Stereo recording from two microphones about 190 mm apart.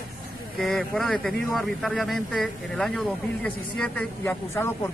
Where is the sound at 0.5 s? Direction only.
Centre (ahead or behind).